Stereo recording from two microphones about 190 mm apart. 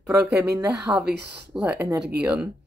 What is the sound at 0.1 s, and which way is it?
Speech, 15° right (ahead or behind).